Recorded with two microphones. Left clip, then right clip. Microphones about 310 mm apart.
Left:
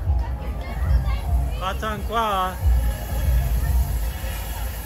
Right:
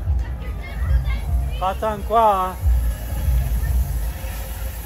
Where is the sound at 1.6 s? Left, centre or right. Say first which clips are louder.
Right 5 dB; centre.